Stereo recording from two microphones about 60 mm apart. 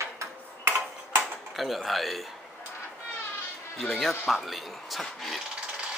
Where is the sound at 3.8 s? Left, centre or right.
Centre.